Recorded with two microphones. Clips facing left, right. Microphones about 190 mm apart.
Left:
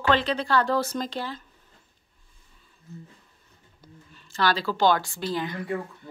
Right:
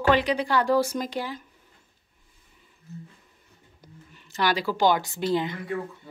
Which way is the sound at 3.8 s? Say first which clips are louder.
Even; 20° right (ahead or behind).